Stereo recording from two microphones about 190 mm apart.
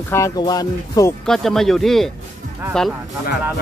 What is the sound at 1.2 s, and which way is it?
Speech, centre (ahead or behind).